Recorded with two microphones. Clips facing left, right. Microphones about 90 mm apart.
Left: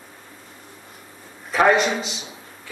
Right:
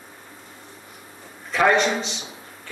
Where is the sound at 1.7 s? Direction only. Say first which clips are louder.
Even; 5° left (ahead or behind).